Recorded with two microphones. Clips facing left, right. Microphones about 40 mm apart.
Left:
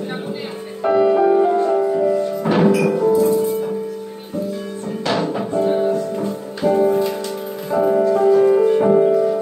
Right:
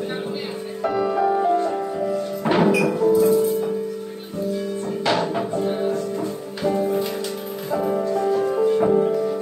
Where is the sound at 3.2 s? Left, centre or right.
Centre.